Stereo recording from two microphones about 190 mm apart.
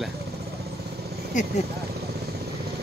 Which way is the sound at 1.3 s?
40° left (ahead or behind).